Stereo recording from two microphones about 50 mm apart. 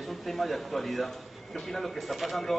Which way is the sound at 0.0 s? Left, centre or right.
Centre.